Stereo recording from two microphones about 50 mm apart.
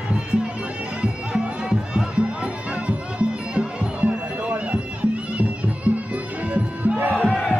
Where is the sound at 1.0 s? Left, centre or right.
Centre.